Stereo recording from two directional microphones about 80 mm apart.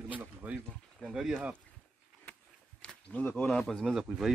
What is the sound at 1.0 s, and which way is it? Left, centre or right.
Speech, centre.